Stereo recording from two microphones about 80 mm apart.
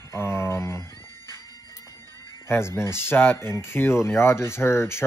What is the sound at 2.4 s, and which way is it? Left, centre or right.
Speech, left.